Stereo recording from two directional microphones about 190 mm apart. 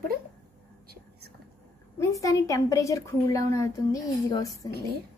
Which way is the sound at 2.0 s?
15° left (ahead or behind).